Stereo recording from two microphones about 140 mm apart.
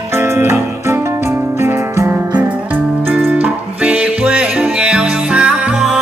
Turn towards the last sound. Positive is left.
turn(degrees=-5)  # may be behind; listen again after turning